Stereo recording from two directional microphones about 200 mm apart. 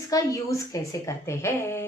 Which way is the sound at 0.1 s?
15° left (ahead or behind).